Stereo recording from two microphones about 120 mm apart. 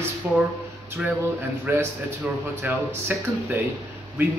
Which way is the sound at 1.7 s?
20° right (ahead or behind).